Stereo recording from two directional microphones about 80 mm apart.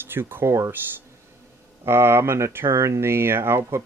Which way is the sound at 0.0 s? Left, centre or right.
Right.